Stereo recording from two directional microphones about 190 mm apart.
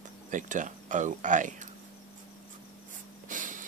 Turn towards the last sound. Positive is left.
turn(degrees=-45)  # may be behind; listen again after turning